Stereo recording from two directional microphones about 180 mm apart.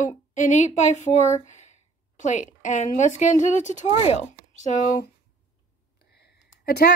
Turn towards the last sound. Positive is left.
turn(degrees=60)  # may be behind; listen again after turning